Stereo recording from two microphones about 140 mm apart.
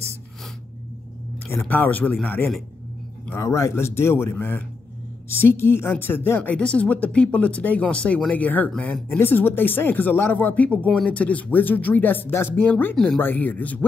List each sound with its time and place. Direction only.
1.4 s a woman's voice: 15° left (ahead or behind)
12.9 s speech: 5° left (ahead or behind)
13.2 s a woman's voice: 15° left (ahead or behind)